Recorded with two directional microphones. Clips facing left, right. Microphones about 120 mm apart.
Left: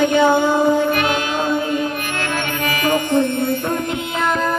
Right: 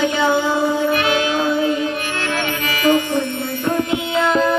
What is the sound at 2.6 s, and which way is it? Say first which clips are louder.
Music: right 3 dB; 45° left (ahead or behind).